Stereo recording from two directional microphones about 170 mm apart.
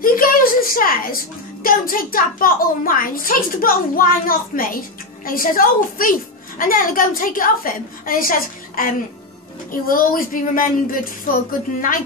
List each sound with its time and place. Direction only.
0.0 s a woman's voice: 55° left (ahead or behind)